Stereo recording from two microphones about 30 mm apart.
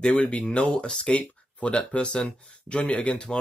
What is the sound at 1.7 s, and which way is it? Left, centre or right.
Speech, left.